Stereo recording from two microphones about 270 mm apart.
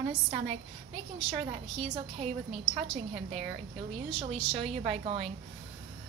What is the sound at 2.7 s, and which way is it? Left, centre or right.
A woman's voice, right.